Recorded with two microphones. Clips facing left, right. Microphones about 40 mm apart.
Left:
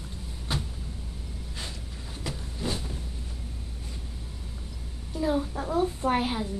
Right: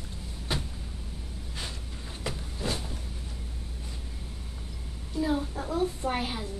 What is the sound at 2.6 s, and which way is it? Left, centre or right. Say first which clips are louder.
Vehicle: even; centre.